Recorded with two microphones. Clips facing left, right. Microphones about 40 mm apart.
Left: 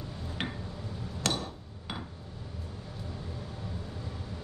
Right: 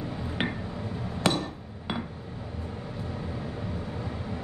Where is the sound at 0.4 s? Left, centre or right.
Centre.